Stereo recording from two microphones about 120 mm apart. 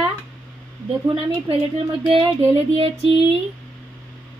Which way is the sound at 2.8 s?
55° right (ahead or behind).